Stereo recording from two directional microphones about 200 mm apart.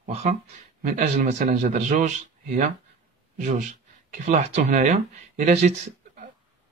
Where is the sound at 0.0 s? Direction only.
35° right (ahead or behind).